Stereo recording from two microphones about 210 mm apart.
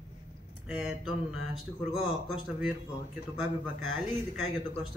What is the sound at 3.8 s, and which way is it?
Speech, 80° right.